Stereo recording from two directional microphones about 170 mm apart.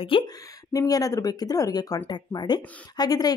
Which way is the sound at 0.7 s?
20° left (ahead or behind).